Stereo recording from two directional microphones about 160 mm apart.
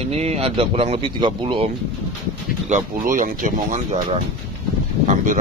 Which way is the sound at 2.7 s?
55° right (ahead or behind).